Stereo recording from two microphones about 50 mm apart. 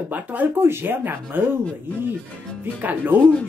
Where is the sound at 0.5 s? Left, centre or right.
Right.